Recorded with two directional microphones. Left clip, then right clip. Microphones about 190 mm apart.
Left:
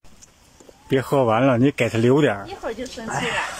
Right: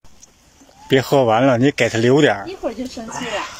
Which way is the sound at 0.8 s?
5° left (ahead or behind).